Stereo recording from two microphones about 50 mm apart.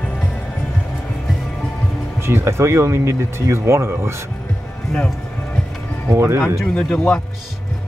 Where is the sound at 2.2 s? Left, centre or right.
Right.